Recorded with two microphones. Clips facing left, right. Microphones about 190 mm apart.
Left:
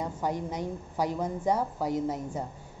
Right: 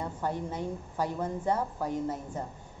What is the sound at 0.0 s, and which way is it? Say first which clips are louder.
A woman's voice: left 2 dB; 15° left (ahead or behind).